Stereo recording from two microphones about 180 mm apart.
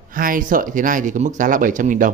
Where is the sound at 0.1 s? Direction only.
50° right (ahead or behind).